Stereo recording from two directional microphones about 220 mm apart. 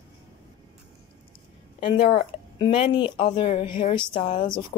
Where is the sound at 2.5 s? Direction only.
20° left (ahead or behind).